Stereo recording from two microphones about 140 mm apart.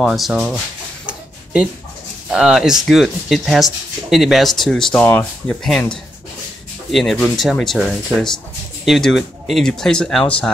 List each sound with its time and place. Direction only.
0.0 s speech: centre (ahead or behind)
1.0 s chicken: 5° right (ahead or behind)
2.3 s speech: 5° right (ahead or behind)